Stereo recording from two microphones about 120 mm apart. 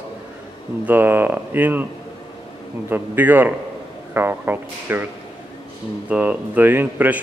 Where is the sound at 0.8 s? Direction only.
15° right (ahead or behind).